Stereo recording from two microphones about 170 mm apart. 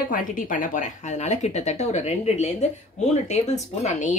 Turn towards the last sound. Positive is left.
turn(degrees=45)  # may be behind; listen again after turning